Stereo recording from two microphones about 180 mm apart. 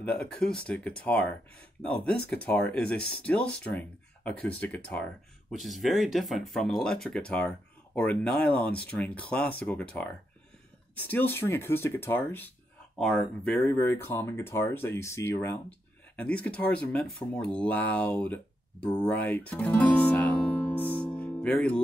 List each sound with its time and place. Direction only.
0.0 s speech: 5° left (ahead or behind)